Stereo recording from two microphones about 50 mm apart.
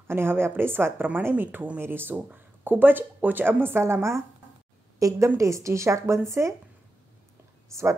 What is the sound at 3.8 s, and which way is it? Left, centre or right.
Speech, right.